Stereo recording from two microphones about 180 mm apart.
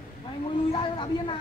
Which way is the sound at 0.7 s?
30° left (ahead or behind).